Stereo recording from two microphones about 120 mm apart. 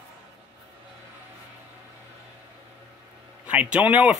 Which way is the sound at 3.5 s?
10° right (ahead or behind).